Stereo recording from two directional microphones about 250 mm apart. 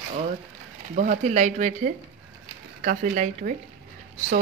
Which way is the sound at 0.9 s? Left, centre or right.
Right.